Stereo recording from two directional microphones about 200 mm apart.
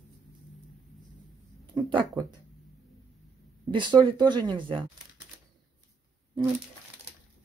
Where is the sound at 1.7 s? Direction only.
20° right (ahead or behind).